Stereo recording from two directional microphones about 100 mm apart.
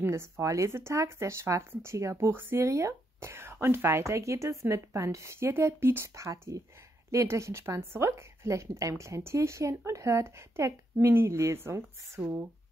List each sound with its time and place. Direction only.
0.0 s speech: 25° right (ahead or behind)
12.2 s speech: 10° right (ahead or behind)